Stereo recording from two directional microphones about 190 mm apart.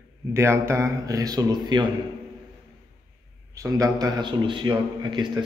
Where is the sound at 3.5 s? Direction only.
15° right (ahead or behind).